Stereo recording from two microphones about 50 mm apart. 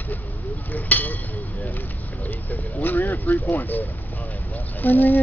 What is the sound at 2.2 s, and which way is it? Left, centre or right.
Vehicle, left.